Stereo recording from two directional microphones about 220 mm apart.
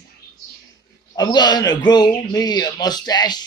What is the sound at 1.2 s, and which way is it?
A man's voice, 20° left (ahead or behind).